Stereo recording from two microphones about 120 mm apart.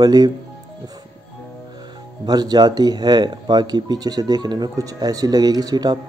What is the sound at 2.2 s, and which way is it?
Speech, 35° right (ahead or behind).